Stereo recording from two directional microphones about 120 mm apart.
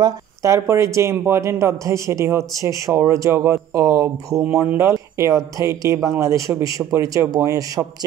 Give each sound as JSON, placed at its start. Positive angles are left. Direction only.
{"t": 0.0, "sound": "speech", "side_deg": -25}